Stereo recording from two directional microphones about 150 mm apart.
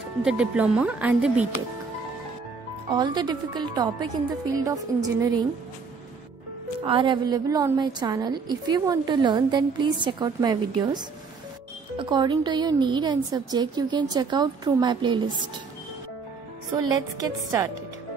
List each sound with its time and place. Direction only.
0.2 s speech: 5° right (ahead or behind)
2.9 s a woman's voice: 30° right (ahead or behind)
6.8 s a woman's voice: 35° right (ahead or behind)
16.7 s a woman's voice: 25° right (ahead or behind)